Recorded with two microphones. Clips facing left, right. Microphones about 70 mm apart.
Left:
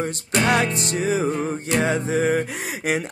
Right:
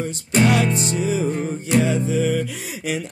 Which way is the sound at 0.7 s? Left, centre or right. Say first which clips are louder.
Right 4 dB; right.